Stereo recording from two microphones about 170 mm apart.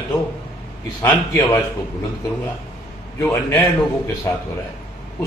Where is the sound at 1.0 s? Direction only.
20° left (ahead or behind).